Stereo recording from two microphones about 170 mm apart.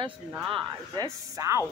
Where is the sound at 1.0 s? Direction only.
20° right (ahead or behind).